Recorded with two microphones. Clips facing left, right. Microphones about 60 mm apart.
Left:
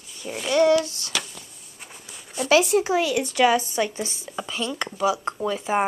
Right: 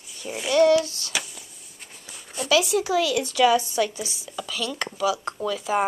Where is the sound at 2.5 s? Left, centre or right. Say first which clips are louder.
Left 2 dB; left.